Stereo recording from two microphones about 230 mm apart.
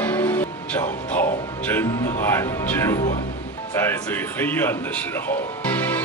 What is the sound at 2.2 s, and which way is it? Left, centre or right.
Speech, centre.